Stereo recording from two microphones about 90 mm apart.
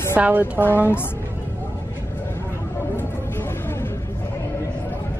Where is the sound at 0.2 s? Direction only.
20° right (ahead or behind).